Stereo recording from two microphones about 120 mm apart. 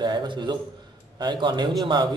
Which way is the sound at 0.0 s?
35° right (ahead or behind).